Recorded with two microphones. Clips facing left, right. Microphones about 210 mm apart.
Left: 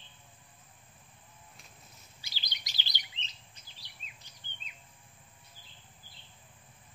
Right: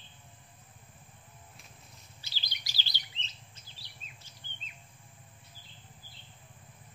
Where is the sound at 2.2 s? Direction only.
15° left (ahead or behind).